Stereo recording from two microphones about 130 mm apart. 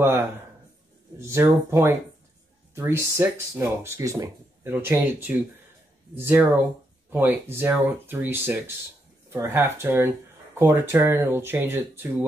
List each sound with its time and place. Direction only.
1.1 s speech: 20° right (ahead or behind)
4.7 s speech: 15° right (ahead or behind)